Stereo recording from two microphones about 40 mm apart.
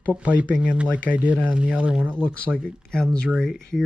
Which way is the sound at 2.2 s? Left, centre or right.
Left.